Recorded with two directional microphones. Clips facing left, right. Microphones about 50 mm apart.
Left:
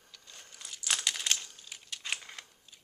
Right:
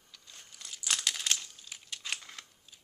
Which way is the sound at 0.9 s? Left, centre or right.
Centre.